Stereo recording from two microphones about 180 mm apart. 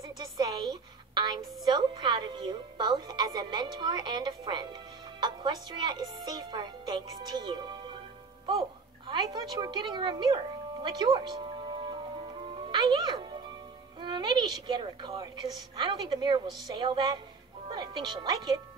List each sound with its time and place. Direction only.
0.4 s a sound: 25° right (ahead or behind)
1.7 s a woman's voice: 25° right (ahead or behind)
12.4 s music: 30° right (ahead or behind)
13.9 s a woman's voice: 25° right (ahead or behind)